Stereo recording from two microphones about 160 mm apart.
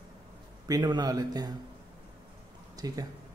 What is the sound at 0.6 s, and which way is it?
Speech, 25° right (ahead or behind).